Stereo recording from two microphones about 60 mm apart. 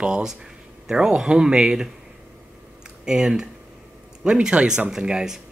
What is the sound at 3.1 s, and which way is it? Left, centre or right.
Speech, centre.